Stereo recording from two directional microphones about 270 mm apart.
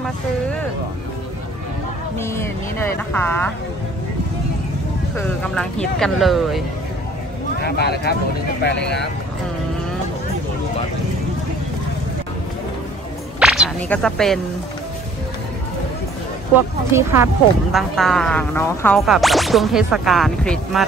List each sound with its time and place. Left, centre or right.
2.1 s speech: centre
5.1 s speech: centre
7.6 s speech: left
13.4 s a sound: centre
16.9 s speech: centre